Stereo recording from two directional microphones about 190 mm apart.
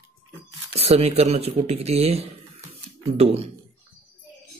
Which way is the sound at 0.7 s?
30° right (ahead or behind).